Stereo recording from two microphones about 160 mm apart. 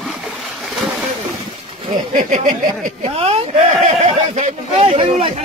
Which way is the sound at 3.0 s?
40° right (ahead or behind).